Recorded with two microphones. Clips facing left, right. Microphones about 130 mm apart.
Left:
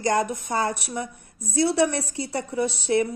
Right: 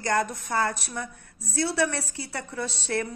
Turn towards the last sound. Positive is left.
turn(degrees=15)  # may be behind; listen again after turning